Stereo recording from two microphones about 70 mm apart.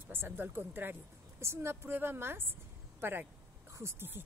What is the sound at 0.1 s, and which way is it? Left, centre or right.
Speech, right.